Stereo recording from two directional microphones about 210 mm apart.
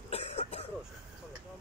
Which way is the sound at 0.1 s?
30° left (ahead or behind).